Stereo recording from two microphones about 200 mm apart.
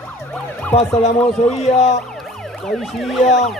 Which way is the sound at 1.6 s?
35° left (ahead or behind).